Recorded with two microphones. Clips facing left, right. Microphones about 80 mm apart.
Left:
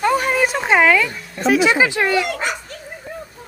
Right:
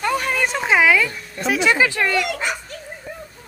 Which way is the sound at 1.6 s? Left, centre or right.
Centre.